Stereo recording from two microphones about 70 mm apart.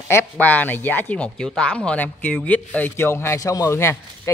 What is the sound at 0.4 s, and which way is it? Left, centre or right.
Speech, left.